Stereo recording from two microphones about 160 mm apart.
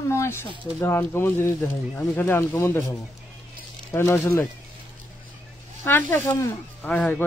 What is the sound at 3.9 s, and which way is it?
Speech, 15° left (ahead or behind).